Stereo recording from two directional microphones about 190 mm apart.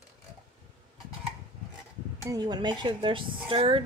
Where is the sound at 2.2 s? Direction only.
20° right (ahead or behind).